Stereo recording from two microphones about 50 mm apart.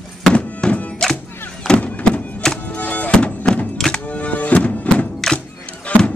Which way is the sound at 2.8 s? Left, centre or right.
Left.